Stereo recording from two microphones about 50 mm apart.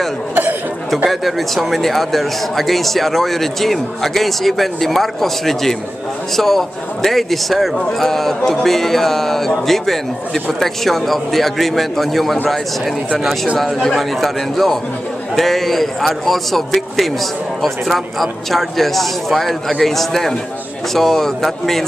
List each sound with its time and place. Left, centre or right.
0.3 s chatter: right
0.9 s speech: centre
13.9 s speech: centre